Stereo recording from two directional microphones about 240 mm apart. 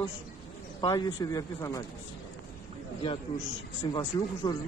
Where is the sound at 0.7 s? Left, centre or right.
Centre.